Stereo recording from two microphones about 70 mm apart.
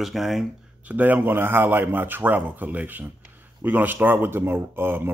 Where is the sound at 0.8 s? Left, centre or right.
Right.